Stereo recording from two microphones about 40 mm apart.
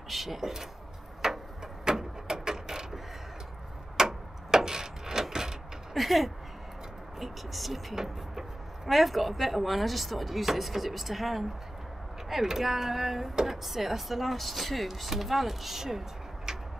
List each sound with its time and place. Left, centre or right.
0.1 s speech: centre
1.2 s a sound: centre
5.3 s vehicle: centre
5.9 s speech: centre
16.5 s tick-tock: centre